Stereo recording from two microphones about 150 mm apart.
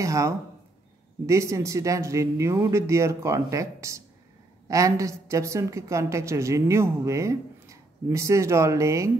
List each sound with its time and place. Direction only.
0.0 s a woman's voice: 20° right (ahead or behind)